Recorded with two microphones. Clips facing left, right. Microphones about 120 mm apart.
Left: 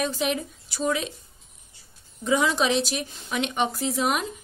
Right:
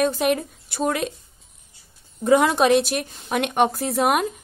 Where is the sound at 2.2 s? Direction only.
55° right (ahead or behind).